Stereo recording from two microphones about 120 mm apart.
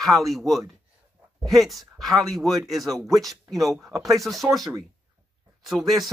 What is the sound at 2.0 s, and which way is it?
Speech, 30° right (ahead or behind).